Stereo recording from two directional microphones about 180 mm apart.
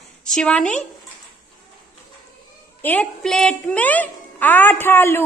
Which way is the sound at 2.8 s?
10° left (ahead or behind).